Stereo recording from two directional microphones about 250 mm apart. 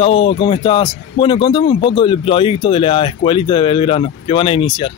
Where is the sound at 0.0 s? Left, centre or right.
Left.